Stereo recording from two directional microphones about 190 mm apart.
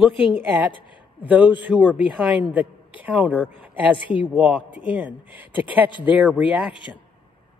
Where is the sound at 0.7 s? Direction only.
25° left (ahead or behind).